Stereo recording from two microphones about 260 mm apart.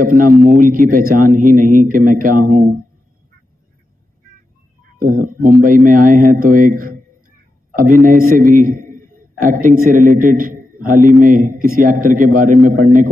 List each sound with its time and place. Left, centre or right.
0.0 s a man's voice: right
4.9 s a man's voice: right